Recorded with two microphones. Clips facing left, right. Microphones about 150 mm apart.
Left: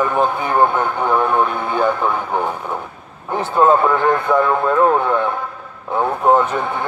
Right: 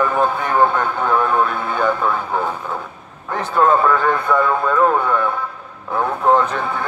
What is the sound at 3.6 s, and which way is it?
Speech, 20° left (ahead or behind).